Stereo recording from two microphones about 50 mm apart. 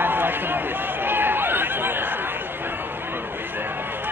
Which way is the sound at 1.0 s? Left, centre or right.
Right.